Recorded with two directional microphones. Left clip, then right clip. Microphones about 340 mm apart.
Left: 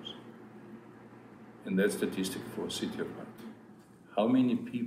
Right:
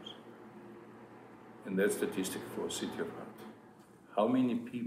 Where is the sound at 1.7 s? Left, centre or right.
Centre.